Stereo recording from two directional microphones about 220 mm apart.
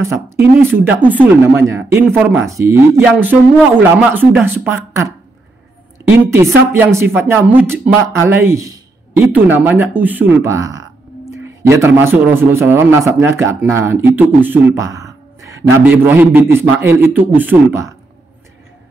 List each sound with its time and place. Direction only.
0.0 s a man's voice: 10° right (ahead or behind)